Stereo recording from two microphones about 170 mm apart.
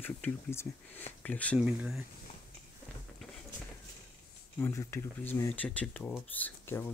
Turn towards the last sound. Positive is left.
turn(degrees=10)  # may be behind; listen again after turning